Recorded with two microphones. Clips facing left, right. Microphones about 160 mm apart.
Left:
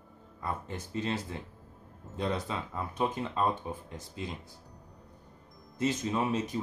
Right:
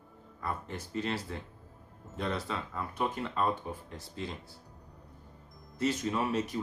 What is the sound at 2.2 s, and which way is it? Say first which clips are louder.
Speech: left 2 dB; 20° left (ahead or behind).